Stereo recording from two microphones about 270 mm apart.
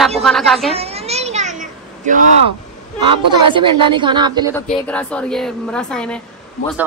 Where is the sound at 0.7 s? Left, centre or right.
Right.